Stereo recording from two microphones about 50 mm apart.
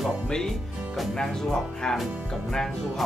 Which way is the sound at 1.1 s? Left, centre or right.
Centre.